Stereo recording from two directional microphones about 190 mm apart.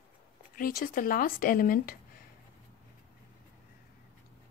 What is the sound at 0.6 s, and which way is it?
Speech, 50° left (ahead or behind).